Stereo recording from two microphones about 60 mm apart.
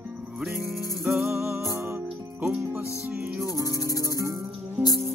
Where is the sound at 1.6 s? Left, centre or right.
Right.